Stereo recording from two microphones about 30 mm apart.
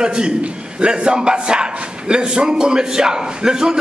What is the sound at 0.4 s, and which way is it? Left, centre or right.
A man's voice, right.